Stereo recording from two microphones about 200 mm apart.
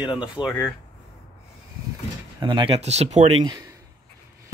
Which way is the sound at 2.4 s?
25° right (ahead or behind).